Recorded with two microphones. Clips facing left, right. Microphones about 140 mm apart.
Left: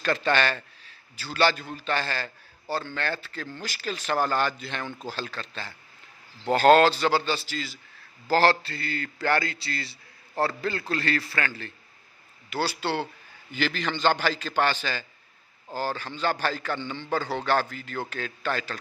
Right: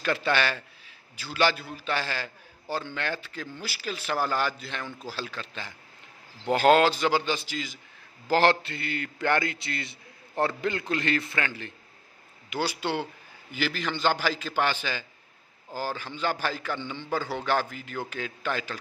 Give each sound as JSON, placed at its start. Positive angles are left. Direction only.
{"t": 0.0, "sound": "a man's voice", "side_deg": -10}